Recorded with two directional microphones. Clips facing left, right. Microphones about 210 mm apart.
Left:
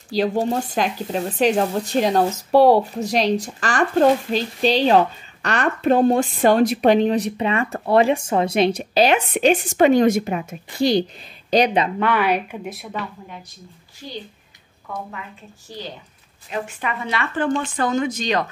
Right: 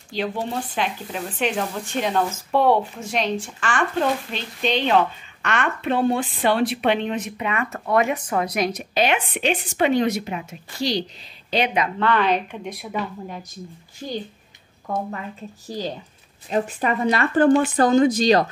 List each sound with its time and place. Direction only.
0.1 s speech: 40° left (ahead or behind)
11.5 s speech: 35° left (ahead or behind)
12.0 s a woman's voice: 10° left (ahead or behind)
14.0 s a child's voice: 50° right (ahead or behind)
16.4 s speech: 35° right (ahead or behind)